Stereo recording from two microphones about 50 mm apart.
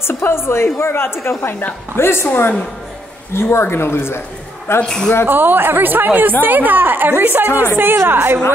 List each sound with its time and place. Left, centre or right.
0.0 s a woman's voice: left
2.2 s a woman's voice: left
4.8 s speech: centre
5.2 s a woman's voice: right